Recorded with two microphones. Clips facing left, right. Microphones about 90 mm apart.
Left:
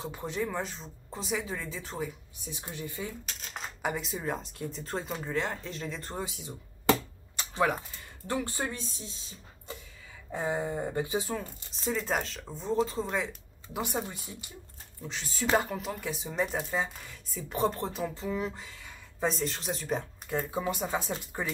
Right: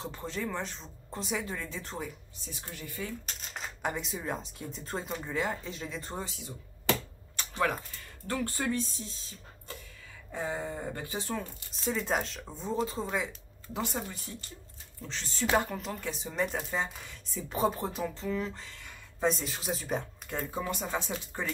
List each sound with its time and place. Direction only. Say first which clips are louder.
0.0 s speech: left 3 dB; 15° left (ahead or behind)
0.6 s speech: left 2 dB; centre (ahead or behind)
2.4 s speech: left 4 dB; 20° left (ahead or behind)
3.3 s speech: left 1 dB; centre (ahead or behind)
8.3 s speech: even; 15° left (ahead or behind)
8.8 s speech: even; centre (ahead or behind)
10.5 s speech: left 4 dB; 15° left (ahead or behind); by 13.3 s centre (ahead or behind)
13.7 s speech: left 2 dB; 15° left (ahead or behind); by 18.1 s centre (ahead or behind)
18.1 s speech: left 1 dB; 10° left (ahead or behind)